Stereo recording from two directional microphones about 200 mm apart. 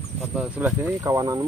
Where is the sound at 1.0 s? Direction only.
15° right (ahead or behind).